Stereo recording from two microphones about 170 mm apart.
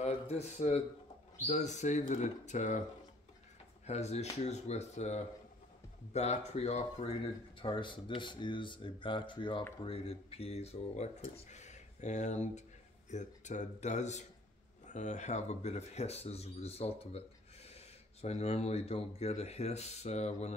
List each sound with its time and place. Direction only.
0.0 s a man's voice: 40° left (ahead or behind)
3.8 s speech: 40° left (ahead or behind)